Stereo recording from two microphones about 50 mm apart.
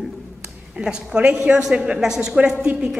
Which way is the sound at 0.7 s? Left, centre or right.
Centre.